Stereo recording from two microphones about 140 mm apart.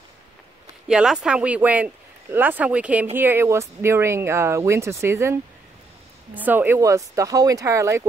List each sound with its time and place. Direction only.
0.8 s speech: 5° right (ahead or behind); by 8.1 s 20° right (ahead or behind)